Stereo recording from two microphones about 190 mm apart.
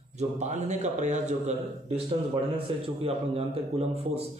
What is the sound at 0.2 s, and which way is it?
A man's voice, 35° right (ahead or behind).